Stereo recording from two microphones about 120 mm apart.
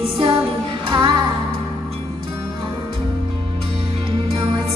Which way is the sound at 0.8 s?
45° right (ahead or behind).